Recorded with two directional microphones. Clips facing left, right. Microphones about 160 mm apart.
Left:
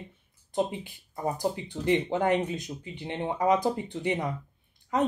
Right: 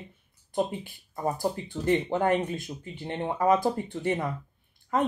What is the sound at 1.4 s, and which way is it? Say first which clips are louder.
Speech: even; 15° left (ahead or behind).